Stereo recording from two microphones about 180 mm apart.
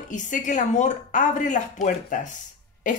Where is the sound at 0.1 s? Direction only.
45° left (ahead or behind).